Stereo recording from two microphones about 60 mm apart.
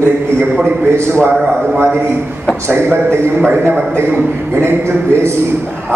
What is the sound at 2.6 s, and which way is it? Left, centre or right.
Speech, right.